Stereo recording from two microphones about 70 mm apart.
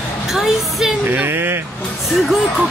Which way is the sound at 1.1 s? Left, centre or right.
Right.